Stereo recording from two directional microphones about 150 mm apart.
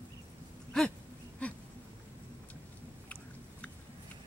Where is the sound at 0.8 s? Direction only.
5° left (ahead or behind).